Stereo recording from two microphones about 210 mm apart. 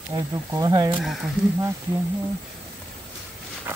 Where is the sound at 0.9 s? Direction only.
Centre (ahead or behind).